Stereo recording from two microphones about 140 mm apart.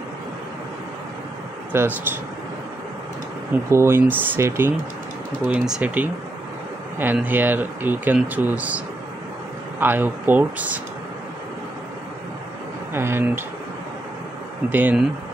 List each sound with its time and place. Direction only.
1.7 s speech: 15° right (ahead or behind)
3.7 s speech: 15° right (ahead or behind)
12.9 s speech: 15° right (ahead or behind)
14.7 s speech: 10° right (ahead or behind)